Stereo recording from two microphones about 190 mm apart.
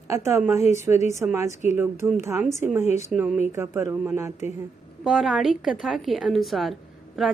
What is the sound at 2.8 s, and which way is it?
Speech, 40° left (ahead or behind).